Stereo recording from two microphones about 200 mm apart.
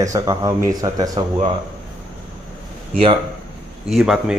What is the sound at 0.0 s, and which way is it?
Speech, 15° right (ahead or behind).